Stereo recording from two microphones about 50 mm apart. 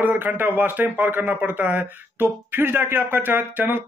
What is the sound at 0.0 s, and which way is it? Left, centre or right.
Speech, right.